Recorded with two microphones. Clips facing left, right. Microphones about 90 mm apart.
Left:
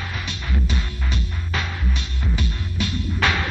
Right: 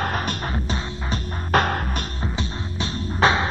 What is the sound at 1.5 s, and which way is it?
Music, 50° right (ahead or behind).